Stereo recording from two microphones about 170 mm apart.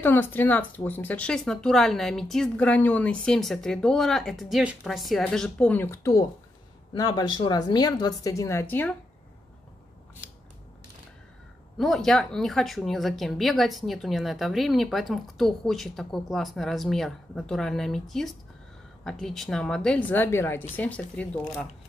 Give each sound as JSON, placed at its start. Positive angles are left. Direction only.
{"t": 0.0, "sound": "speech", "side_deg": 10}
{"t": 11.8, "sound": "a woman's voice", "side_deg": 0}